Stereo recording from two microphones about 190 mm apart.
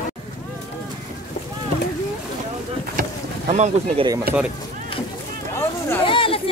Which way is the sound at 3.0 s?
35° right (ahead or behind).